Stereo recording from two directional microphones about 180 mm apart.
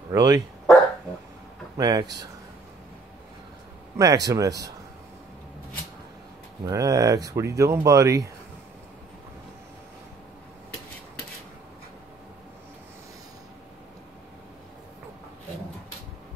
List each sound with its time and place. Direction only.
0.1 s speech: 20° right (ahead or behind)
1.8 s speech: 20° right (ahead or behind)
4.0 s speech: 20° right (ahead or behind)
6.6 s speech: 20° right (ahead or behind)